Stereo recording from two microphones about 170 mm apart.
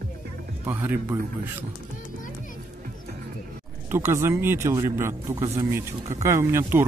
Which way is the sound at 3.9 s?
15° right (ahead or behind).